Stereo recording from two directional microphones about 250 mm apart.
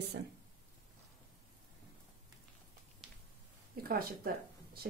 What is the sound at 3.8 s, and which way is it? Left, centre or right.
Speech, right.